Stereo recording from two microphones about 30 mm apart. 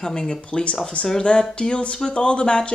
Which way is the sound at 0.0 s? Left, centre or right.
Left.